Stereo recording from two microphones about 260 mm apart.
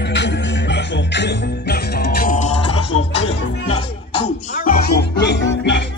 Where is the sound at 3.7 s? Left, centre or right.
Left.